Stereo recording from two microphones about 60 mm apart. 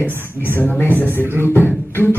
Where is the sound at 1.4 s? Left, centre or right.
Left.